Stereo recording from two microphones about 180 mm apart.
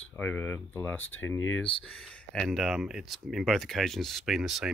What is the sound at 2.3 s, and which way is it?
Speech, centre (ahead or behind).